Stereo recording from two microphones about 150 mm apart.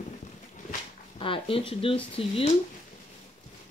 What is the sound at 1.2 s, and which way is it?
Speech, 35° left (ahead or behind).